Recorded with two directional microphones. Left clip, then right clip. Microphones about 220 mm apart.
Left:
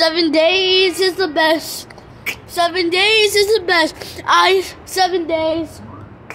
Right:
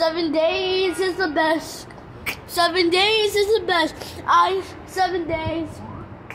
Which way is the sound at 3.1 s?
20° left (ahead or behind).